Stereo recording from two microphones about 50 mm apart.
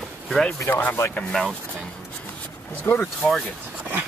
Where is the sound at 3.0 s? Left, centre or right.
Centre.